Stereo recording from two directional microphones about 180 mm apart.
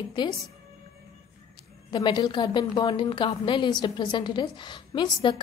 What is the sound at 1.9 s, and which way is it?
A woman's voice, 25° left (ahead or behind).